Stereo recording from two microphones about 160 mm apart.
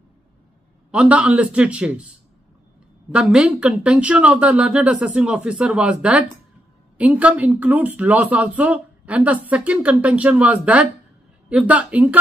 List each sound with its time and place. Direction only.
0.9 s speech: 10° right (ahead or behind)
3.1 s speech: 5° right (ahead or behind)